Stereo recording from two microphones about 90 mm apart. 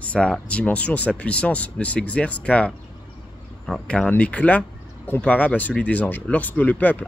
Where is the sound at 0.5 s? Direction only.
15° left (ahead or behind).